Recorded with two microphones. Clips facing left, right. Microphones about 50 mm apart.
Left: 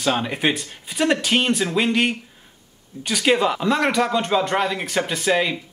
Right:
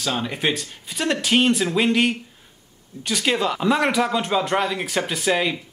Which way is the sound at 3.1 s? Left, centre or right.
Centre.